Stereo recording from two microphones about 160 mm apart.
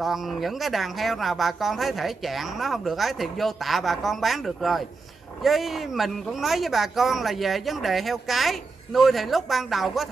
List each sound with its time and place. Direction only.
0.0 s speech: centre (ahead or behind)